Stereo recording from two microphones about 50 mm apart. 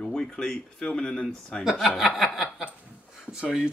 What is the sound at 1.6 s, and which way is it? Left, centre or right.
Speech, centre.